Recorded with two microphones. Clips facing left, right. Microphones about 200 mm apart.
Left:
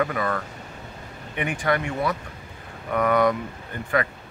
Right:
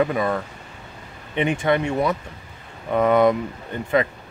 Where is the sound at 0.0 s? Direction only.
20° right (ahead or behind).